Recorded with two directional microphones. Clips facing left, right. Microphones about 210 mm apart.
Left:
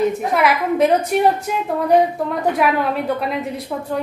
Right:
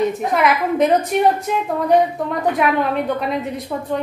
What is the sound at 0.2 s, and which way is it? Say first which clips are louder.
Speech: even; centre (ahead or behind).